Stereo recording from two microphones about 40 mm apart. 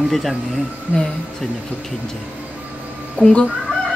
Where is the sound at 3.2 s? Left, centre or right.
Left.